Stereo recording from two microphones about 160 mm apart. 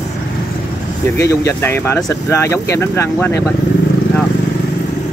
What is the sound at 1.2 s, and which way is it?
Speech, 20° left (ahead or behind).